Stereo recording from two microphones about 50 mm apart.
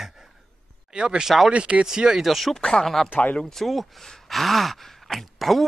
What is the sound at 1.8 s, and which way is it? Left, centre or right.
Speech, centre.